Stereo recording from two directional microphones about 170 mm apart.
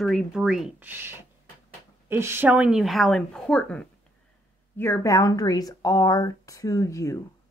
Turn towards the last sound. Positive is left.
turn(degrees=20)  # may be behind; listen again after turning